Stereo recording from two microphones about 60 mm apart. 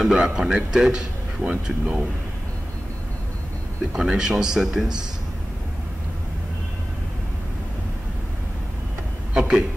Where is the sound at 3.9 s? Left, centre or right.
Centre.